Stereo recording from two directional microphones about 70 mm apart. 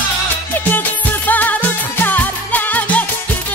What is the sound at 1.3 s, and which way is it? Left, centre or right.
Music, left.